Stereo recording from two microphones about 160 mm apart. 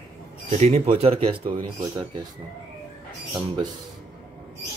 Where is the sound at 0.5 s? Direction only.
40° right (ahead or behind).